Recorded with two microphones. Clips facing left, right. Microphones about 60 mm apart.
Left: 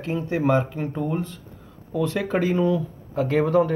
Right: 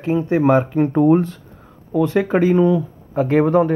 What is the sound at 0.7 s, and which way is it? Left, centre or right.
Speech, right.